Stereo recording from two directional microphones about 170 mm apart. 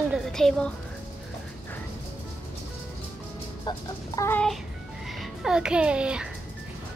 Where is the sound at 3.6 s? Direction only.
20° left (ahead or behind).